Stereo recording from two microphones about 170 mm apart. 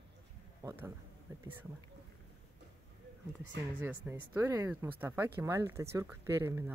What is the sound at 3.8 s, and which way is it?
Speech, 10° right (ahead or behind).